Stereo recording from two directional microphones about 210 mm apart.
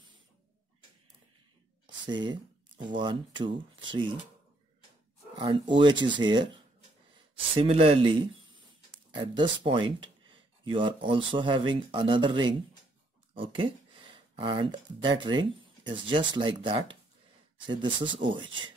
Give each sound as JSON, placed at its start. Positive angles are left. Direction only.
{"t": 2.0, "sound": "speech", "side_deg": -20}
{"t": 5.4, "sound": "speech", "side_deg": -25}